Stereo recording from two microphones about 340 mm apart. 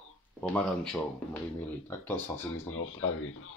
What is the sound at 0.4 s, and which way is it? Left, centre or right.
Speech, centre.